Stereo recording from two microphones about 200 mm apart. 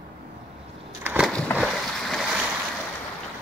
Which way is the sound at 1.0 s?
5° right (ahead or behind).